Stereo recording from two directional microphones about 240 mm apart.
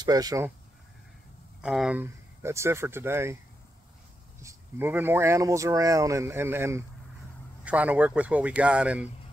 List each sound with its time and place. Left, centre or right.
0.0 s speech: centre
1.6 s speech: centre
4.4 s speech: centre